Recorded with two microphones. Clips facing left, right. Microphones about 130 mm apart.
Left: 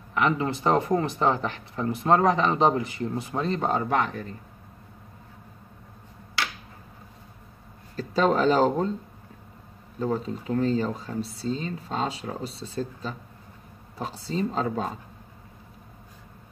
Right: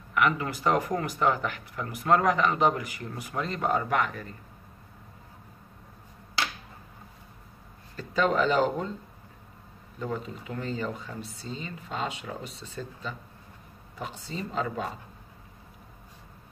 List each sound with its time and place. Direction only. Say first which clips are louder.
0.1 s speech: left 2 dB; 30° left (ahead or behind)
7.9 s speech: left 3 dB; 35° left (ahead or behind)
9.9 s speech: left 6 dB; 35° left (ahead or behind)